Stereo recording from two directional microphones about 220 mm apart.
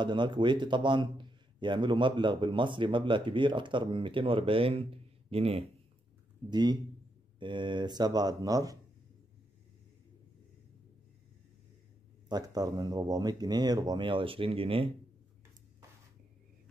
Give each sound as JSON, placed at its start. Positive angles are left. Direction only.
{"t": 0.0, "sound": "a man's voice", "side_deg": -20}
{"t": 12.3, "sound": "a man's voice", "side_deg": -20}